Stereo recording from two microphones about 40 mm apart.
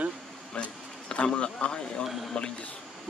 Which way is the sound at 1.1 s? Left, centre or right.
Left.